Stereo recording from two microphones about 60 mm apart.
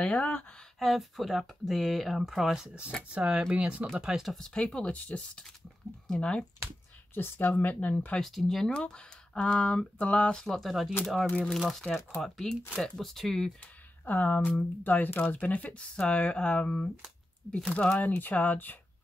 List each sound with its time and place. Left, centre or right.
0.0 s speech: left
0.7 s speech: centre
3.1 s speech: right
4.3 s speech: centre
4.9 s speech: left
7.2 s speech: left
8.2 s speech: centre
10.7 s speech: centre
11.3 s speech: centre
12.2 s speech: centre
14.0 s speech: left